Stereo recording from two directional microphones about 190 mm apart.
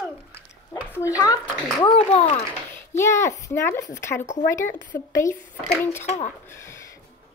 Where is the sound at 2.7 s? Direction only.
15° left (ahead or behind).